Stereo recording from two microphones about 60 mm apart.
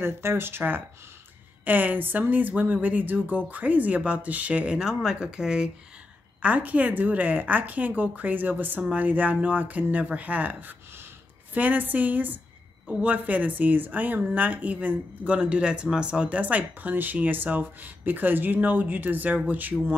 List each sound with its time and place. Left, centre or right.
0.0 s speech: right; by 5.7 s centre
6.4 s speech: right